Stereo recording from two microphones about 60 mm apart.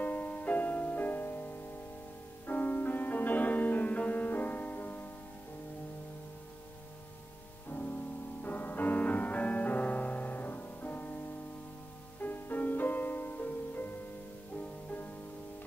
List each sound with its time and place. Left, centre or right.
0.0 s music: left
7.7 s music: left
12.2 s music: left